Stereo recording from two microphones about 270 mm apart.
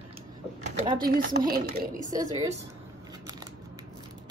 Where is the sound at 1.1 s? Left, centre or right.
Right.